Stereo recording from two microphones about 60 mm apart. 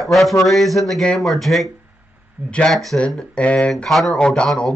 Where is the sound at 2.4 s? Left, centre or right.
Right.